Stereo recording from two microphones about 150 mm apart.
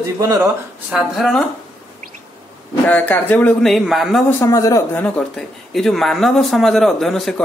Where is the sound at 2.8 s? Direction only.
10° left (ahead or behind).